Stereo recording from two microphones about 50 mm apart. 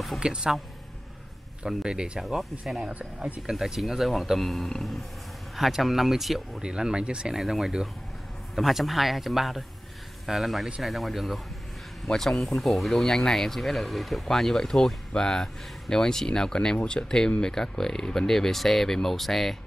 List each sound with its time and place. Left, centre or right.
0.2 s speech: centre
1.7 s speech: centre
2.1 s speech: centre
2.9 s speech: right
3.4 s speech: centre
6.6 s speech: centre
7.3 s speech: centre